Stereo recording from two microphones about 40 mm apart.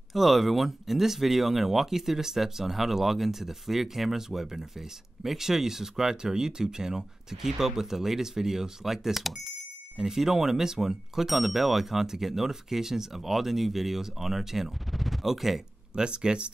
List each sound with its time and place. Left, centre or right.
0.1 s speech: centre
15.9 s speech: right